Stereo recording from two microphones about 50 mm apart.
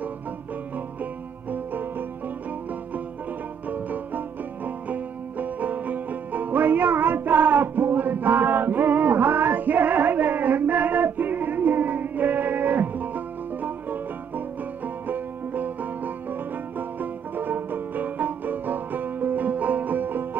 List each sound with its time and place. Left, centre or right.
1.5 s music: right
3.6 s music: right